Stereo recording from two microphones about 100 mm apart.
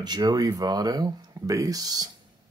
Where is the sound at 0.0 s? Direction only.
45° right (ahead or behind).